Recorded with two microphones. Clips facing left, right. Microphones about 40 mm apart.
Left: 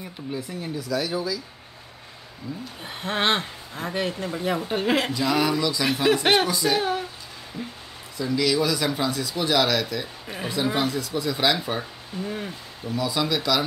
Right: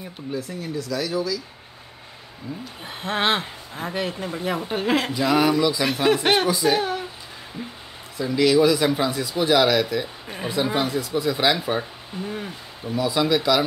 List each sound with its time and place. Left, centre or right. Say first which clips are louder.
0.7 s speech: right 1 dB; centre
2.8 s speech: right 1 dB; centre
5.1 s speech: right 3 dB; centre
6.8 s speech: even; centre
7.6 s speech: even; right